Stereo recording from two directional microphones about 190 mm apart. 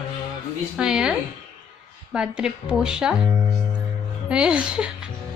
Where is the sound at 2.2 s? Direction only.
5° right (ahead or behind).